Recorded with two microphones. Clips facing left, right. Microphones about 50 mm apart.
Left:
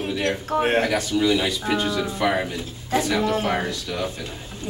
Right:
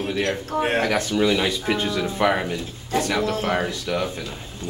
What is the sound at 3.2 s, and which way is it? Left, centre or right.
Speech, centre.